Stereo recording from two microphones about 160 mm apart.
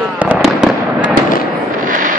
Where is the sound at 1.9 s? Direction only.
55° right (ahead or behind).